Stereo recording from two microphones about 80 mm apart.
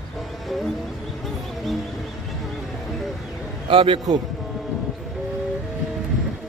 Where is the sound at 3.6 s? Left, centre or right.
Right.